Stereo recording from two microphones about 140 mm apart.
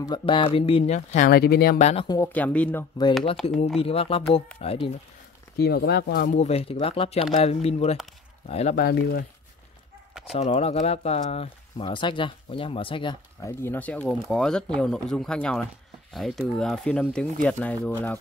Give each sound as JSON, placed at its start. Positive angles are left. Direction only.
{"t": 0.1, "sound": "speech", "side_deg": 40}
{"t": 2.2, "sound": "speech", "side_deg": 10}
{"t": 3.8, "sound": "speech", "side_deg": 45}
{"t": 5.6, "sound": "speech", "side_deg": 90}
{"t": 8.7, "sound": "speech", "side_deg": 90}
{"t": 10.3, "sound": "speech", "side_deg": 50}
{"t": 13.4, "sound": "speech", "side_deg": 15}